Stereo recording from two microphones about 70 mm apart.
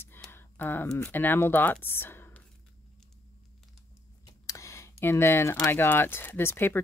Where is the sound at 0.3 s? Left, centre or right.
Left.